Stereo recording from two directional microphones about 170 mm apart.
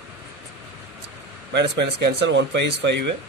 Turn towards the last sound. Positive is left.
turn(degrees=-90)